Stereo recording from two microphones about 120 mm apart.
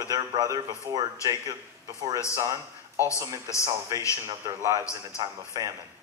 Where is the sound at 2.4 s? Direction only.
25° right (ahead or behind).